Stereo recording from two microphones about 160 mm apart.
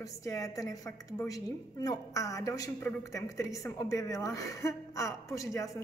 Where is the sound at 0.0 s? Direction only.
20° left (ahead or behind).